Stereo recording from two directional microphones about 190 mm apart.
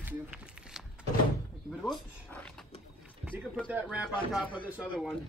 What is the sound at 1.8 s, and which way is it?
Speech, 10° left (ahead or behind).